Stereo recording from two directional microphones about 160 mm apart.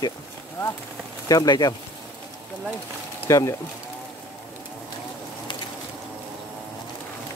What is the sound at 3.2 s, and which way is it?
Speech, 20° left (ahead or behind).